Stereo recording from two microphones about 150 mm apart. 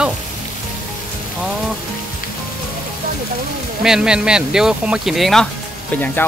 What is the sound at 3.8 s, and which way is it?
Speech, 5° right (ahead or behind).